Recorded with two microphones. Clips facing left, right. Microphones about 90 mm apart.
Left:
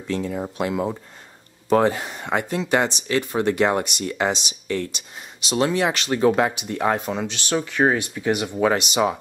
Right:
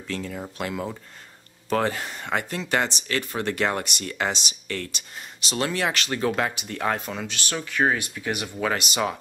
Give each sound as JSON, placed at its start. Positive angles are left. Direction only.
{"t": 0.0, "sound": "speech", "side_deg": 15}
{"t": 8.9, "sound": "speech", "side_deg": 10}